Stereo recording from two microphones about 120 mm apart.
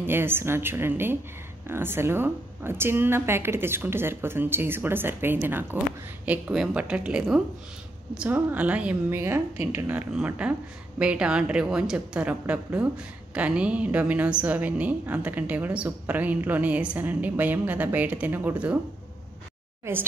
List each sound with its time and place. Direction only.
0.0 s a woman's voice: 20° right (ahead or behind)
19.8 s speech: 15° right (ahead or behind)